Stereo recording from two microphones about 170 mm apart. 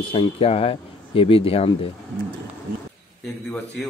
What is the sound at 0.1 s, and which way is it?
Speech, 30° left (ahead or behind).